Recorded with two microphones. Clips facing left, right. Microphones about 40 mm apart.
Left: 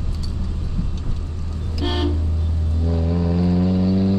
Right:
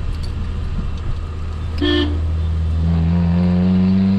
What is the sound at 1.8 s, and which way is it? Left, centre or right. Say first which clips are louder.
Toot: right 6 dB; right.